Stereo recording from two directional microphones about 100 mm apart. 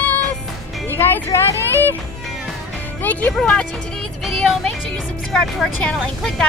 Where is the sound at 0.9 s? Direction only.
30° left (ahead or behind).